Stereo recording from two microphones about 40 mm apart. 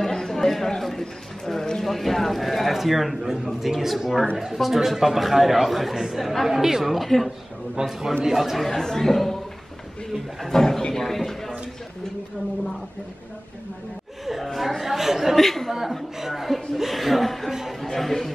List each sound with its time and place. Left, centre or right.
0.0 s a man's voice: centre
7.8 s a man's voice: right
8.2 s speech: centre
8.6 s speech: centre
10.4 s speech: centre
10.9 s a sound: centre
14.2 s a sound: centre
15.3 s a man's voice: centre
16.2 s a man's voice: centre
17.5 s speech: centre
17.8 s speech: centre